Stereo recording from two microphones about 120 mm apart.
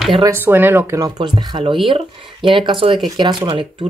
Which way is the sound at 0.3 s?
20° right (ahead or behind).